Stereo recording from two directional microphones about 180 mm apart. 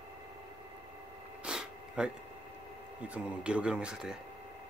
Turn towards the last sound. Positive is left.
turn(degrees=-5)  # may be behind; listen again after turning